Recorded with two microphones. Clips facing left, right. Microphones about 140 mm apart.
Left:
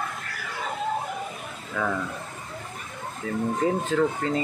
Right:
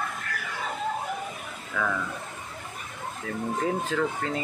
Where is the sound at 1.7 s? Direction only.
20° left (ahead or behind).